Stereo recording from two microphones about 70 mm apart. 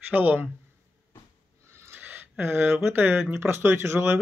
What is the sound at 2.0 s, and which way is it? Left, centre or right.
Speech, right.